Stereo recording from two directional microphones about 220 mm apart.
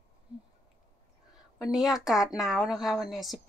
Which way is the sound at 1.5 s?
Centre (ahead or behind).